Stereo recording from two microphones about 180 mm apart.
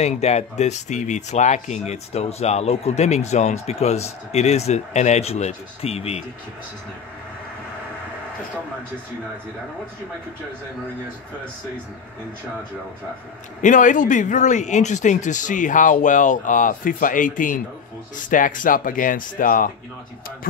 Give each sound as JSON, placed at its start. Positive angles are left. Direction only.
{"t": 0.0, "sound": "speech", "side_deg": 35}
{"t": 13.6, "sound": "speech", "side_deg": 45}